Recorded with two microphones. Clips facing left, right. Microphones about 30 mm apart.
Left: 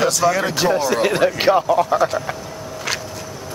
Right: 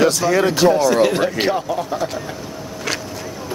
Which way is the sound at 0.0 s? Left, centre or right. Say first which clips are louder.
Right 2 dB; centre.